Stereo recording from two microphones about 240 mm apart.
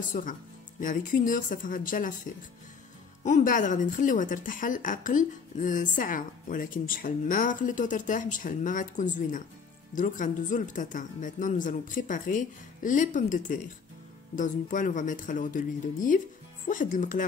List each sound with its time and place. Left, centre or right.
0.0 s a woman's voice: left
3.3 s a woman's voice: left